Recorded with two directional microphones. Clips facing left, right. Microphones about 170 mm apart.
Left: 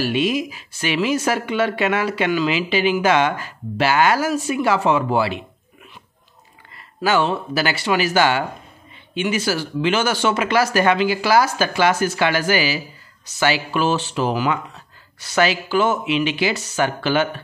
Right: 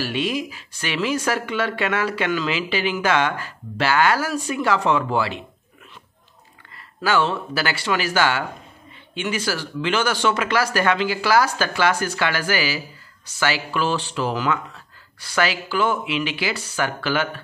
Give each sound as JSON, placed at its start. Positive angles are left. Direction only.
{"t": 0.0, "sound": "speech", "side_deg": 15}
{"t": 7.0, "sound": "speech", "side_deg": 15}